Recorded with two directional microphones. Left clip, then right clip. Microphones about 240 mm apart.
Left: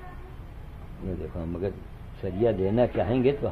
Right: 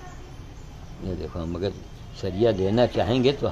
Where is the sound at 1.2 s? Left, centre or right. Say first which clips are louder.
Right 3 dB; centre.